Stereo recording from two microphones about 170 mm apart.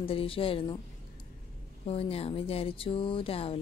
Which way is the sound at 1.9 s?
35° left (ahead or behind).